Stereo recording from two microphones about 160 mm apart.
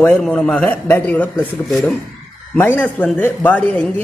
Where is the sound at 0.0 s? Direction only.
10° left (ahead or behind).